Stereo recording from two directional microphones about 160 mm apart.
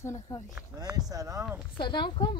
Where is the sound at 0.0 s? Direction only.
20° left (ahead or behind).